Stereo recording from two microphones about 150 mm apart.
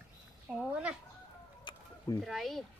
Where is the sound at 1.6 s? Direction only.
25° left (ahead or behind).